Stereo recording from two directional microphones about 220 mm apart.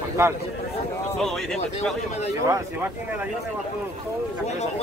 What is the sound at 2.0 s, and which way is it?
Speech, 30° left (ahead or behind).